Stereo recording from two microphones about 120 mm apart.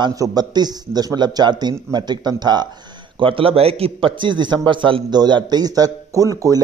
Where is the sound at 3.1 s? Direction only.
45° right (ahead or behind); by 6.6 s 30° right (ahead or behind).